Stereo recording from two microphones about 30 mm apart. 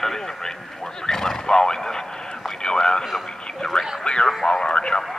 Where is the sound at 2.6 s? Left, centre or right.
Left.